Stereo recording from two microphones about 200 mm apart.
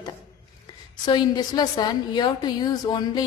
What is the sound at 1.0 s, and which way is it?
A woman's voice, 20° left (ahead or behind).